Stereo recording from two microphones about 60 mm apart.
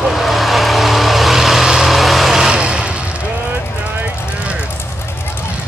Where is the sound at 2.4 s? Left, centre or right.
Centre.